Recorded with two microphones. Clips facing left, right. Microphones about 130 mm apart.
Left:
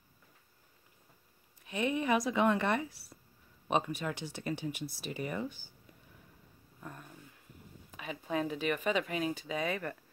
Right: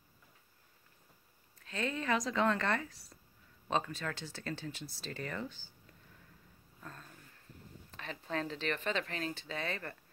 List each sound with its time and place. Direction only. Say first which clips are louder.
1.6 s speech: left 5 dB; 15° left (ahead or behind)
6.8 s a sound: left 3 dB; 15° left (ahead or behind)
7.9 s speech: left 4 dB; 10° left (ahead or behind)